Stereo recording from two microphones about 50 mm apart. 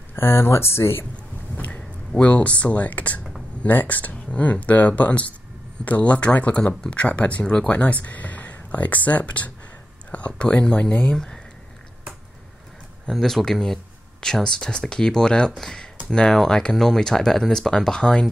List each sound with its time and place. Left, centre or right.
0.1 s speech: left
1.6 s a sound: left
2.2 s speech: left
7.7 s speech: left
13.1 s speech: centre